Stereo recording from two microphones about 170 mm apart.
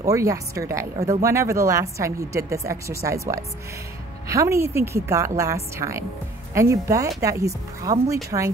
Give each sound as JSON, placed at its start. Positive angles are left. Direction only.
{"t": 0.0, "sound": "speech", "side_deg": -20}